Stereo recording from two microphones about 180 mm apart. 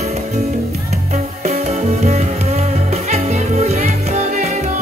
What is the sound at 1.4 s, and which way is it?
Music, 35° right (ahead or behind).